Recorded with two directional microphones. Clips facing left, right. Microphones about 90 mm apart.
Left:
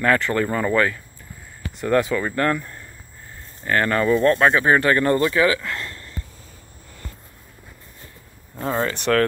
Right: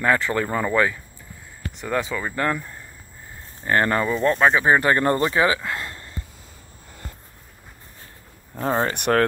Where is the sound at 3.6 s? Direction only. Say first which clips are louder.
Even; 20° right (ahead or behind).